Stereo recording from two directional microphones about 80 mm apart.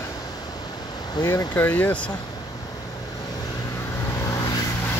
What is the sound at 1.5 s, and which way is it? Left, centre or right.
Speech, left.